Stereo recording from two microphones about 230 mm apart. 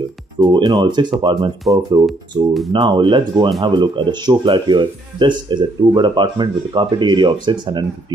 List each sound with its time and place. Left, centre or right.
0.4 s speech: centre
2.0 s speech: centre
2.7 s speech: right